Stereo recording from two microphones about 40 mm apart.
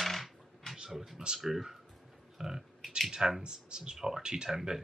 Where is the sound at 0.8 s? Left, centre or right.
Centre.